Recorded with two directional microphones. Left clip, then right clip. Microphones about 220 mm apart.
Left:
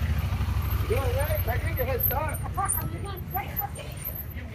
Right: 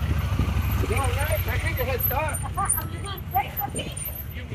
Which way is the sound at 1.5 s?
50° right (ahead or behind).